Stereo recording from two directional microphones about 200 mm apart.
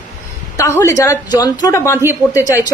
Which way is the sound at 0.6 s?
15° left (ahead or behind).